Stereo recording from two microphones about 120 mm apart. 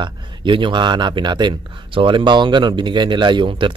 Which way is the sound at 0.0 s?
45° right (ahead or behind).